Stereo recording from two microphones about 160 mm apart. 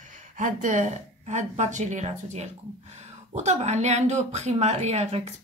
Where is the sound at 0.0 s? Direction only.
50° right (ahead or behind).